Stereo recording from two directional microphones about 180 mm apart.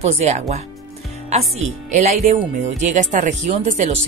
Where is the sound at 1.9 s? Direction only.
40° right (ahead or behind).